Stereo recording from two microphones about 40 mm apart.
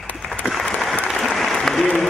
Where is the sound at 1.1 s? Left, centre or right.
Centre.